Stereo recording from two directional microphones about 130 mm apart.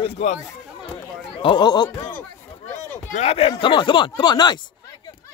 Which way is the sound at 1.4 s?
35° left (ahead or behind).